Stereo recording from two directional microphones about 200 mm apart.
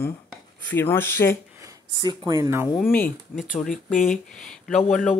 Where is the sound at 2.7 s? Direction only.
5° left (ahead or behind).